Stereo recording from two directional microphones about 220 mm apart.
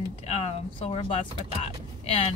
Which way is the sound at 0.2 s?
30° left (ahead or behind).